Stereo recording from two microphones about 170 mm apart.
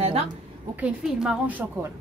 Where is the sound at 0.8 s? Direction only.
5° right (ahead or behind).